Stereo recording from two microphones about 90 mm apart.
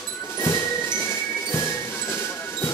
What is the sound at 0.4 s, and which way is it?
Music, 35° left (ahead or behind).